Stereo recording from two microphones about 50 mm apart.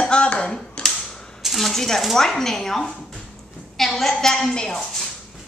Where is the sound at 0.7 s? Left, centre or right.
Centre.